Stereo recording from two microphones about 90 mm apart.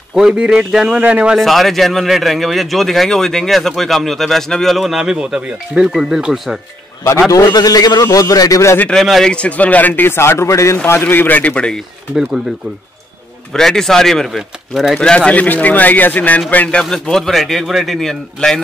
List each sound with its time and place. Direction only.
0.1 s a man's voice: 10° right (ahead or behind)
1.3 s speech: centre (ahead or behind)
7.4 s a man's voice: 45° left (ahead or behind)
8.9 s speech: 5° left (ahead or behind)
9.3 s speech: 15° left (ahead or behind)
13.5 s speech: 5° left (ahead or behind)
15.0 s a man's voice: 10° left (ahead or behind)